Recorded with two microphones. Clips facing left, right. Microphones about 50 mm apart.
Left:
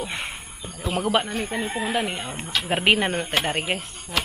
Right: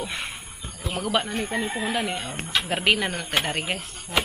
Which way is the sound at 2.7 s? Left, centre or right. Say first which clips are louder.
Left 4 dB; left.